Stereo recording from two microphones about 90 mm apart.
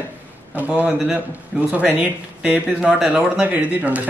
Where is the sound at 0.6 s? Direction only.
15° right (ahead or behind).